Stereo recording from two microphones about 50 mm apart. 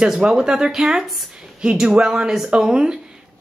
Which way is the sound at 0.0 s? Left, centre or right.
Centre.